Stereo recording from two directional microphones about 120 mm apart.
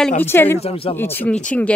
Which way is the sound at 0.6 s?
55° left (ahead or behind).